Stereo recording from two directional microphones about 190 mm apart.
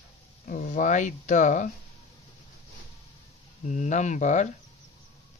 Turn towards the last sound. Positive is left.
turn(degrees=40)  # may be behind; listen again after turning